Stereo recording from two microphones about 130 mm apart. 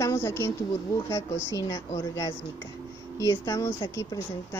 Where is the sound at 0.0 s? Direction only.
20° left (ahead or behind).